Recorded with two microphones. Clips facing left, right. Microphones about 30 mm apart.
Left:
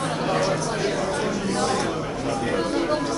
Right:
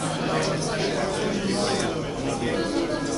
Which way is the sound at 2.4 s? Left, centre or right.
Centre.